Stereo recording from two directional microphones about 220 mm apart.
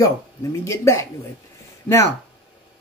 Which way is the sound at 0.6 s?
15° left (ahead or behind).